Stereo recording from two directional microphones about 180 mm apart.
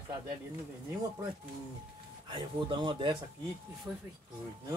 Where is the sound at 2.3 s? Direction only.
25° right (ahead or behind).